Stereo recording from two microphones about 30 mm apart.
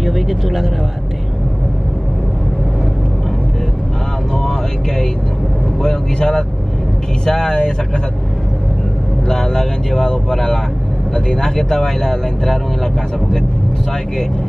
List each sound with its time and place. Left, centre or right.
0.0 s a sound: centre
4.4 s vehicle: centre
6.1 s speech: left
9.3 s speech: left